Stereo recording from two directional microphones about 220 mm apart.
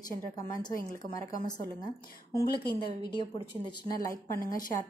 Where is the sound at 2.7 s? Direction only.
20° left (ahead or behind).